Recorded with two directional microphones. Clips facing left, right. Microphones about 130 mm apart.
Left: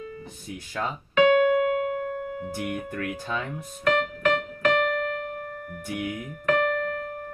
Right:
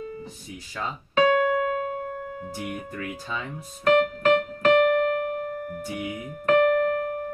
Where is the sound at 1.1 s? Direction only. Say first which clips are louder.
Left 2 dB; 35° right (ahead or behind).